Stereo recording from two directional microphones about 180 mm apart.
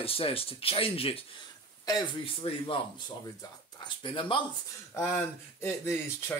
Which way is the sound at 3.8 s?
30° left (ahead or behind).